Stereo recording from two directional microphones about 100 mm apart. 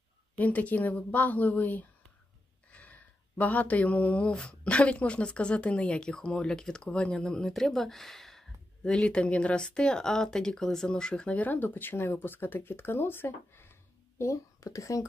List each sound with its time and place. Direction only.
0.4 s speech: 15° left (ahead or behind); by 15.0 s 35° left (ahead or behind)